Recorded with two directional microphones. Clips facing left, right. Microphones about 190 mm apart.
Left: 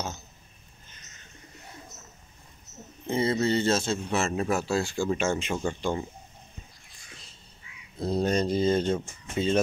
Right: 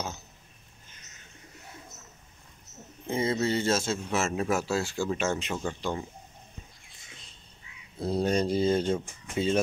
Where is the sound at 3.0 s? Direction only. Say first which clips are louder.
Left 2 dB; 10° right (ahead or behind).